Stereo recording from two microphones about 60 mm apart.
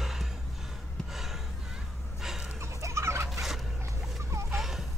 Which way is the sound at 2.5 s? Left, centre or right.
Right.